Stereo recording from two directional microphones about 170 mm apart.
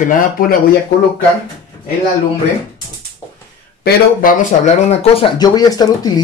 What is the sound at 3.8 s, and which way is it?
Speech, 70° left (ahead or behind).